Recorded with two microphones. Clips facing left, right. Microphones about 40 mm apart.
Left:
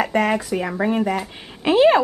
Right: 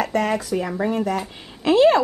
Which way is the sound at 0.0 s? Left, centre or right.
Centre.